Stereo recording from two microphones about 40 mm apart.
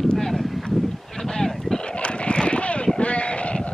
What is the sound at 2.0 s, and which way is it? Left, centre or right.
Sheep, left.